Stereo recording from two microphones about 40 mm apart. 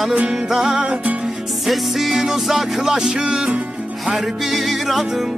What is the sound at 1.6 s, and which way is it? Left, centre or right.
Music, centre.